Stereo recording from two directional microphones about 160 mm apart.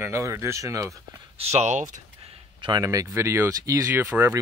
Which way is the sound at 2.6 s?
25° right (ahead or behind).